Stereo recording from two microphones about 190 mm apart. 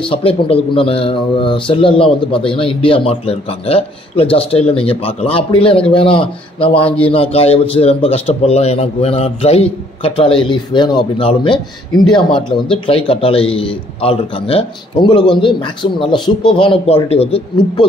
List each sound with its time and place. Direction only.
0.0 s speech: 30° left (ahead or behind)